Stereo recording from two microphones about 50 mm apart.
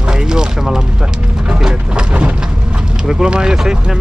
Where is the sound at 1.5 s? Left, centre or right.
Centre.